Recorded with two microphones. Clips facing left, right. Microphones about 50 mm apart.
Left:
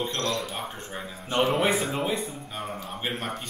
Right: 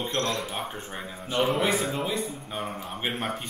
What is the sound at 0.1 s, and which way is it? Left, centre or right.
Speech, right.